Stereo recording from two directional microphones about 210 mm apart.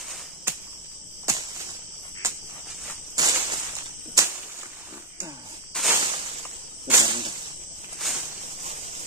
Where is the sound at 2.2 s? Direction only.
15° right (ahead or behind).